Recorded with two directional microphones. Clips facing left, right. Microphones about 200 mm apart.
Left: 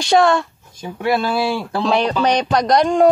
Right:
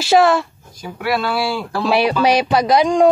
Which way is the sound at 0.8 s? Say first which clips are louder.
Left 2 dB; 25° left (ahead or behind).